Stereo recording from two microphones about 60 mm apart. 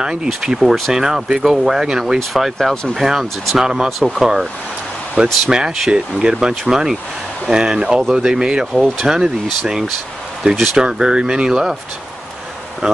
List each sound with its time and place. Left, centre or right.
0.0 s speech: centre
2.7 s speech: centre
3.0 s speech: centre
10.4 s speech: right
12.8 s speech: centre